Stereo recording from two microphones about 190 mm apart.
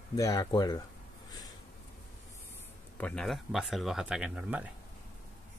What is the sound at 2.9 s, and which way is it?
Speech, 5° left (ahead or behind).